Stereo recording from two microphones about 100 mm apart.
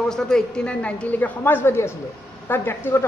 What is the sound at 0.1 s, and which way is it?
A woman's voice, 10° left (ahead or behind).